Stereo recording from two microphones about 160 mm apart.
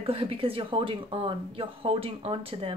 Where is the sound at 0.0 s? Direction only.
35° right (ahead or behind).